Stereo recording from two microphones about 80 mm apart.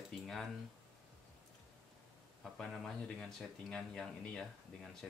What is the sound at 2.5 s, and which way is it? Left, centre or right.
Speech, centre.